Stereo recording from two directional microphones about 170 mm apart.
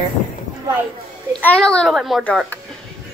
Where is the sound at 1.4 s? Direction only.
5° left (ahead or behind).